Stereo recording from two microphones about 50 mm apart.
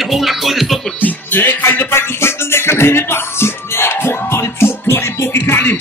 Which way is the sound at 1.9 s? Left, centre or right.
Left.